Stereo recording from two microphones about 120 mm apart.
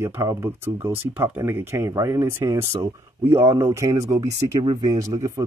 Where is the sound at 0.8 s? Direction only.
20° right (ahead or behind).